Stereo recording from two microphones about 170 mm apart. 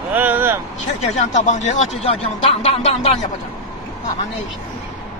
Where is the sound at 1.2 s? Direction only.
45° left (ahead or behind).